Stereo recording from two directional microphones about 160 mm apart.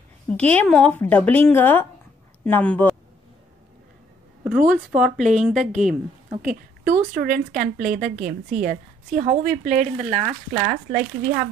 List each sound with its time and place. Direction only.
0.3 s speech: 10° left (ahead or behind)
4.5 s speech: 5° right (ahead or behind)
5.2 s speech: 50° right (ahead or behind)
5.7 s speech: 5° right (ahead or behind)
6.4 s a woman's voice: 55° right (ahead or behind)